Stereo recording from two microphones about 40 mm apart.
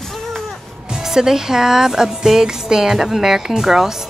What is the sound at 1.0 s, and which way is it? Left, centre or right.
Speech, centre.